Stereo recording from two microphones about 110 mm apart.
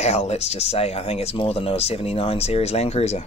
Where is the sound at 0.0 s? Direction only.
75° left (ahead or behind).